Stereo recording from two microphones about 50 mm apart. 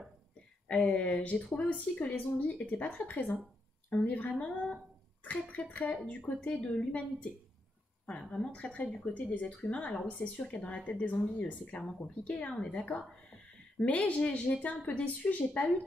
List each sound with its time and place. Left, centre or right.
0.7 s a woman's voice: centre
8.5 s a woman's voice: left
11.8 s a woman's voice: centre; by 15.7 s left